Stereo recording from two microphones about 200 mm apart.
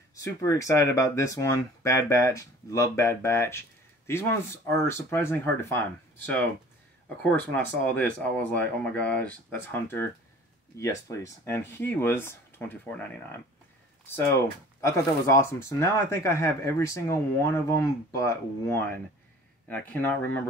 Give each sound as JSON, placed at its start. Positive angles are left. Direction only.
{"t": 0.1, "sound": "speech", "side_deg": 15}
{"t": 14.8, "sound": "speech", "side_deg": 15}